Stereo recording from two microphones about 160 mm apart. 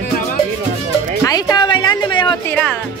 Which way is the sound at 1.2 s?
25° left (ahead or behind).